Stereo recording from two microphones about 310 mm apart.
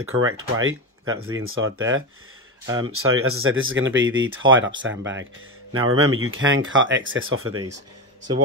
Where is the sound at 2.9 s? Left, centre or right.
Right.